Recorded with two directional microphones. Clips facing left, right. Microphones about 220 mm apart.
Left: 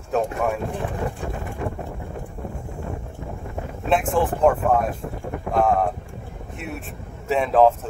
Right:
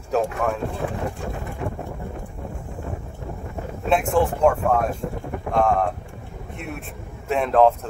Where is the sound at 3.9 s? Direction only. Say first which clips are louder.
Right 1 dB; centre (ahead or behind).